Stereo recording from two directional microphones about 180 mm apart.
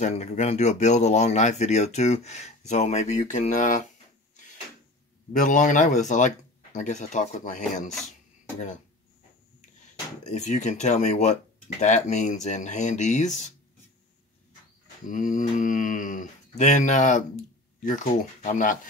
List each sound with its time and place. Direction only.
0.0 s speech: 40° left (ahead or behind)
5.3 s speech: 45° left (ahead or behind)
10.2 s speech: 40° left (ahead or behind)
15.0 s speech: 45° left (ahead or behind)